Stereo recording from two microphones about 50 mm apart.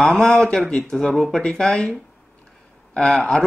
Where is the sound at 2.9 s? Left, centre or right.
Centre.